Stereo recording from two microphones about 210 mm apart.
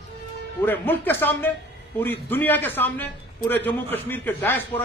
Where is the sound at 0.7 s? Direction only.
10° left (ahead or behind).